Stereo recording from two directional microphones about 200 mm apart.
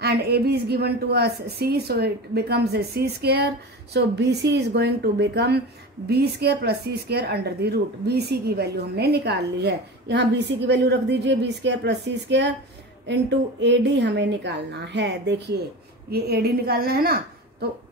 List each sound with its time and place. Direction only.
0.0 s a woman's voice: 50° right (ahead or behind)